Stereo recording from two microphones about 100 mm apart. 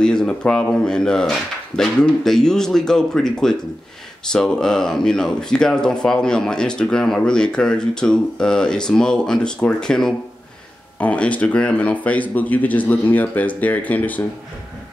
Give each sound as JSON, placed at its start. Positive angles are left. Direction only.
{"t": 0.0, "sound": "speech", "side_deg": 10}